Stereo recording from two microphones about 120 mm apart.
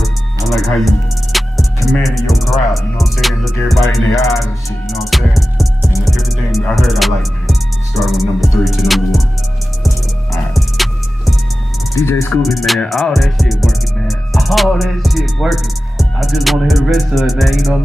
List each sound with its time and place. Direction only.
0.6 s music: centre (ahead or behind)
10.3 s music: centre (ahead or behind)
11.9 s speech: 20° left (ahead or behind)
12.3 s music: centre (ahead or behind)